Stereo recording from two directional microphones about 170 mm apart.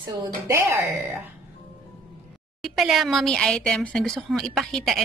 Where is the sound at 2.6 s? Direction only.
Centre (ahead or behind).